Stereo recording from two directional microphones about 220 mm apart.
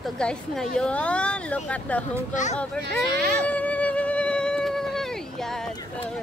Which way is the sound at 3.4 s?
5° left (ahead or behind).